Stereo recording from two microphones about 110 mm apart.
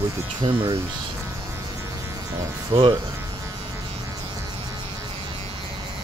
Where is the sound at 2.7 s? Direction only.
65° right (ahead or behind).